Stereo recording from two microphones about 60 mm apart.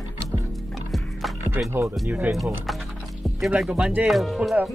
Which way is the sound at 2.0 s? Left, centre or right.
Right.